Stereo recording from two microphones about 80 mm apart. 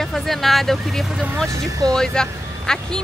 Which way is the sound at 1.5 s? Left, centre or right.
Right.